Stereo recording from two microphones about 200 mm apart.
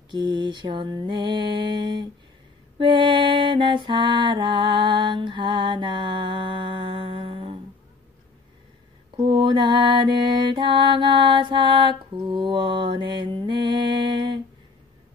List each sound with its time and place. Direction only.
0.1 s mantra: 25° right (ahead or behind)
9.1 s mantra: 25° right (ahead or behind)